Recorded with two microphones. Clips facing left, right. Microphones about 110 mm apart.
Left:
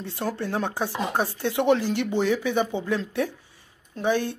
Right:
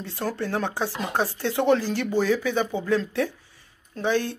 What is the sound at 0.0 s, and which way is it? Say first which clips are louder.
Speech: even; 20° left (ahead or behind).